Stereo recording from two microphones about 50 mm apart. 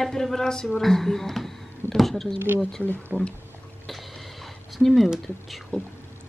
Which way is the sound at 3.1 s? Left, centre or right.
Right.